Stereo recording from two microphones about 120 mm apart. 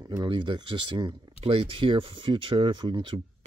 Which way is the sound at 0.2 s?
40° right (ahead or behind).